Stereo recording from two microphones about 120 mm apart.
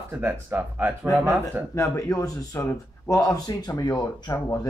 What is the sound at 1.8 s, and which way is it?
Speech, 25° left (ahead or behind).